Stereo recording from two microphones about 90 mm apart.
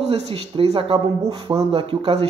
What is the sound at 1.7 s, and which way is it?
Speech, 90° right.